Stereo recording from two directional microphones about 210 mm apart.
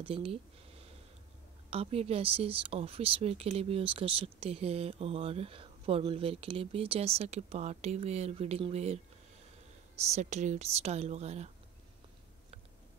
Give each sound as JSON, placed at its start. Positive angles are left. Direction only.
{"t": 0.0, "sound": "speech", "side_deg": -25}
{"t": 1.7, "sound": "speech", "side_deg": -30}